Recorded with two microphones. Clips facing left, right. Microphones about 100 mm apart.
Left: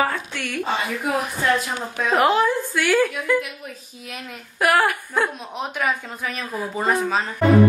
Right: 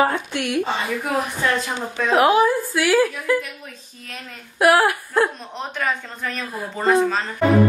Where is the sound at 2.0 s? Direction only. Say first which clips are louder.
Right 2 dB; centre (ahead or behind).